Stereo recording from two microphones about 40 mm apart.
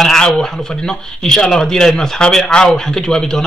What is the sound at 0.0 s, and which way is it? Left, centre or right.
Speech, centre.